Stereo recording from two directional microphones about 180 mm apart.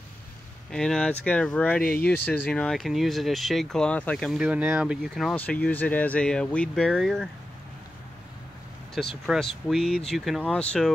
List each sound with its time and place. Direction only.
0.7 s speech: 5° left (ahead or behind)
1.8 s speech: 55° left (ahead or behind)
2.0 s speech: 10° left (ahead or behind)
5.3 s speech: 10° left (ahead or behind)
9.2 s speech: centre (ahead or behind)